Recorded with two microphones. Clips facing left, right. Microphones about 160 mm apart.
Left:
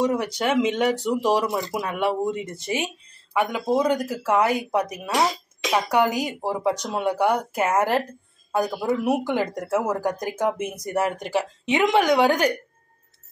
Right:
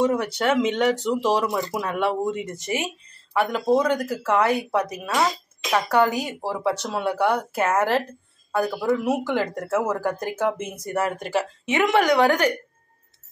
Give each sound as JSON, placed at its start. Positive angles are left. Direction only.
{"t": 0.0, "sound": "speech", "side_deg": 15}